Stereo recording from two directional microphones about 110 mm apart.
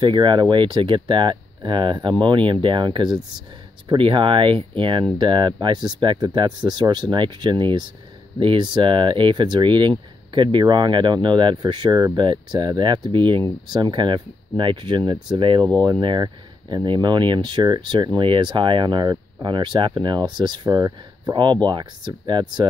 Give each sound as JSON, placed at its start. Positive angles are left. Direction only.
{"t": 0.0, "sound": "speech", "side_deg": -45}